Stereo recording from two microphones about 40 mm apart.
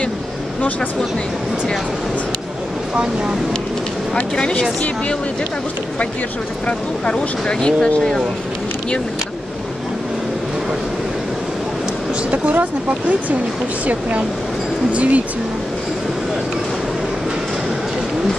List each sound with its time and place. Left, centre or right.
4.1 s speech: left
7.1 s speech: left
12.3 s speech: right
14.9 s speech: right